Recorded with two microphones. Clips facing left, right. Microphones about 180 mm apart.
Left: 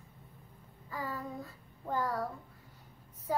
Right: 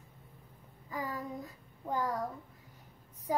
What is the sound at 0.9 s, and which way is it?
Child singing, 15° right (ahead or behind).